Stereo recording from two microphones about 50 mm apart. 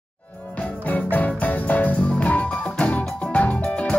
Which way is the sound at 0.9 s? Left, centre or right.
Left.